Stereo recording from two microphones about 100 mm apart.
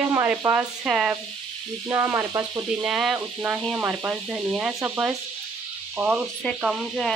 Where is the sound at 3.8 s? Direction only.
20° right (ahead or behind).